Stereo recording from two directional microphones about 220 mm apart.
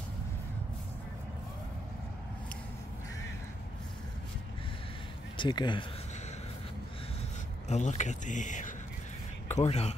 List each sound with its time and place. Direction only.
5.4 s speech: 20° left (ahead or behind)
7.6 s a man's voice: 30° left (ahead or behind)